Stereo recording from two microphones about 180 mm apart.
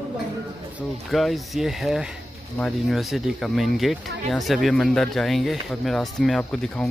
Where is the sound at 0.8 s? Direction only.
Centre (ahead or behind).